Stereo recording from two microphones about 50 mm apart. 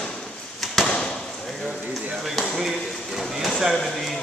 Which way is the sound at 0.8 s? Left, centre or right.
Centre.